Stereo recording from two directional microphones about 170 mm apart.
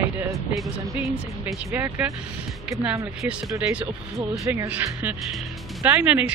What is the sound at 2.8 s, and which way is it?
Speech, 5° right (ahead or behind).